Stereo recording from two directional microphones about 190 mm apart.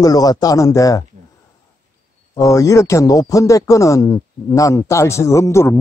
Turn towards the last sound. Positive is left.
turn(degrees=15)  # may be behind; listen again after turning